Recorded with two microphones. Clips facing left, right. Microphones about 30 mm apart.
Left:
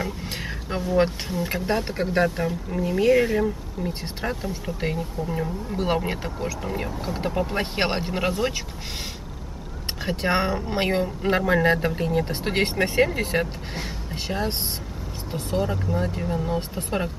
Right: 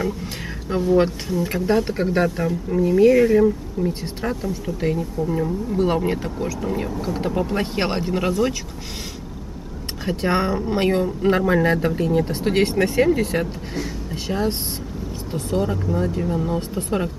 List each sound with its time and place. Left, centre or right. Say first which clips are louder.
0.8 s speech: right 3 dB; centre
10.0 s speech: right 2 dB; centre
15.5 s speech: right 3 dB; centre